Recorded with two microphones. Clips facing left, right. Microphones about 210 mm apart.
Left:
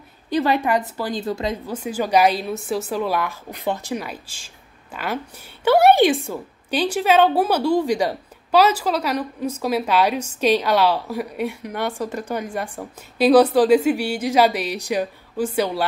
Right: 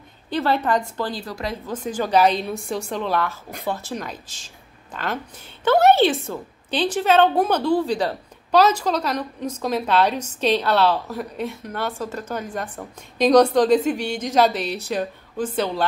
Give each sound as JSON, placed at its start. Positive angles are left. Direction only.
{"t": 0.3, "sound": "a woman's voice", "side_deg": 15}
{"t": 1.1, "sound": "a woman's voice", "side_deg": 25}
{"t": 1.7, "sound": "a woman's voice", "side_deg": 10}